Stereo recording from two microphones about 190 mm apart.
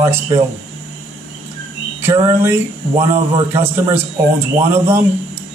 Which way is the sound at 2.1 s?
15° right (ahead or behind).